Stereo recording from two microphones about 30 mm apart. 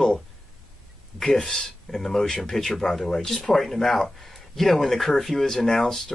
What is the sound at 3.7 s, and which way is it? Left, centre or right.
Speech, centre.